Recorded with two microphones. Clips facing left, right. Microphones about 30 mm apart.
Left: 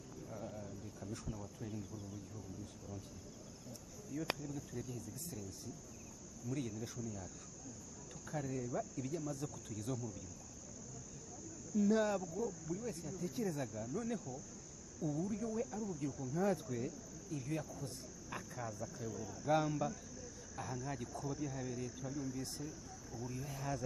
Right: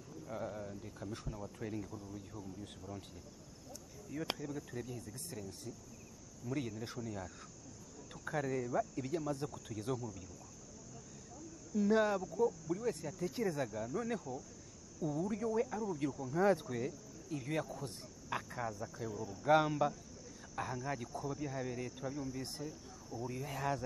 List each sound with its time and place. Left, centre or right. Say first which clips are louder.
0.5 s a sound: right 4 dB; right
1.2 s speech: right 2 dB; centre
1.6 s speech: right 4 dB; right
4.1 s speech: right 1 dB; right
4.5 s cricket: right 2 dB; right
6.4 s speech: right 2 dB; right
11.7 s speech: right 2 dB; right
12.2 s speech: right 7 dB; right